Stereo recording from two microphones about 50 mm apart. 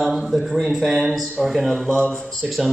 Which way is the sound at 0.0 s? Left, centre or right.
Centre.